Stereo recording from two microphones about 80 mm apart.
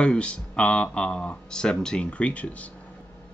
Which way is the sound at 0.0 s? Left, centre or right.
Centre.